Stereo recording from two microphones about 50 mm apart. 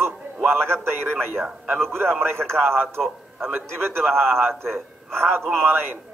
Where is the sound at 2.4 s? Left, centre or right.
Right.